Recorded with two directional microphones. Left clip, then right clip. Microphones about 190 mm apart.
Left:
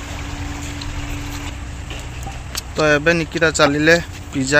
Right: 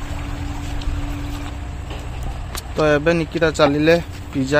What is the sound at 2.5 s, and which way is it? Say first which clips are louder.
Speech: left 1 dB; centre (ahead or behind).